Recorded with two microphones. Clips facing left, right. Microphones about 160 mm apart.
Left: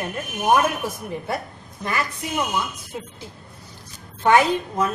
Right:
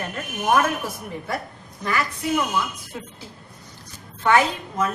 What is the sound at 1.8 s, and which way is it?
Speech, 20° left (ahead or behind).